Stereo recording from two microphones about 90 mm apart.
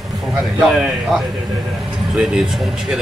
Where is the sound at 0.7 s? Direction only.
5° right (ahead or behind).